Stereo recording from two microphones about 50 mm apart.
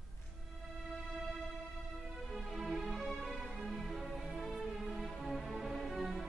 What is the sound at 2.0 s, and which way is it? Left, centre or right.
Music, centre.